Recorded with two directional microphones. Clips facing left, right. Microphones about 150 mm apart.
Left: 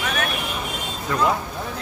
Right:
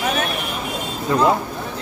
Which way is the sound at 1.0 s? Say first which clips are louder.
Right 5 dB; 25° right (ahead or behind).